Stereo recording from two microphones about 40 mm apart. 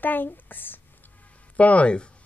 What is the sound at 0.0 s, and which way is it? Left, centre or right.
Speech, left.